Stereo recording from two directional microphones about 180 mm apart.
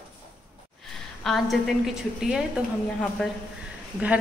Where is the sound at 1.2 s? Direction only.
Centre (ahead or behind).